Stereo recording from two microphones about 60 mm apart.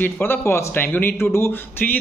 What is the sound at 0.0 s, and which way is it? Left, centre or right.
Speech, left.